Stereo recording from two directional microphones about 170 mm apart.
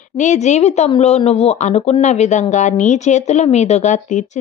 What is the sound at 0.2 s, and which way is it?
A woman's voice, 45° left (ahead or behind).